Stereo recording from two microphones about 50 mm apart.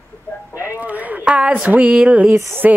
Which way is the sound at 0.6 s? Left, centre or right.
Right.